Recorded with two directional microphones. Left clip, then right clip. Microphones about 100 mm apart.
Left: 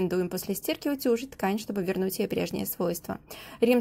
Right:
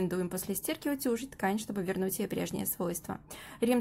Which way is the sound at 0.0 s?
20° left (ahead or behind).